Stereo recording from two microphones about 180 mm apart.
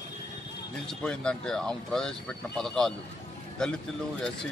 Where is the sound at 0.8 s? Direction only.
5° left (ahead or behind).